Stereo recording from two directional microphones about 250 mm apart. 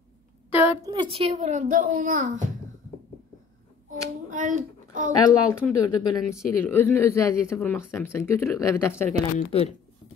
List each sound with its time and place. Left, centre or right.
0.5 s a sound: left
0.8 s a child's voice: centre
3.9 s a child's voice: right
5.2 s speech: centre